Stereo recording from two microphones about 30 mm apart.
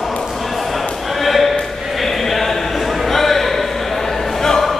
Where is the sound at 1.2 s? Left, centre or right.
Centre.